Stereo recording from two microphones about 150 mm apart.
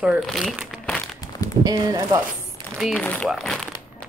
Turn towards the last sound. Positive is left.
turn(degrees=5)  # may be behind; listen again after turning